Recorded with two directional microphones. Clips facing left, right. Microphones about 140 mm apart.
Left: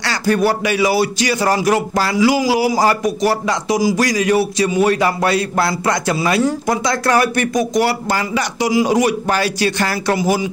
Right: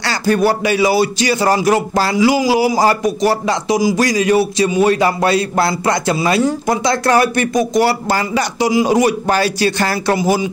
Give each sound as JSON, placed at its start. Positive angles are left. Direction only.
{"t": 0.0, "sound": "speech", "side_deg": -30}